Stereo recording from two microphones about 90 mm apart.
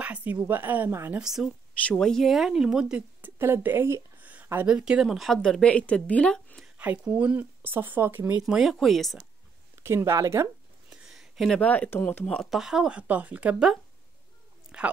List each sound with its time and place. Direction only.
0.0 s speech: 15° right (ahead or behind)
1.1 s speech: 5° right (ahead or behind)
1.9 s speech: 5° left (ahead or behind)
3.2 s speech: 25° right (ahead or behind)
4.6 s speech: 10° right (ahead or behind); by 6.6 s 10° left (ahead or behind)
6.8 s speech: 15° right (ahead or behind)
8.5 s speech: 5° right (ahead or behind)
9.8 s speech: 30° right (ahead or behind)
10.9 s a sound: 5° right (ahead or behind)
11.6 s speech: 15° left (ahead or behind)
12.4 s speech: 5° right (ahead or behind)
13.0 s speech: 20° right (ahead or behind)
14.7 s speech: 10° right (ahead or behind)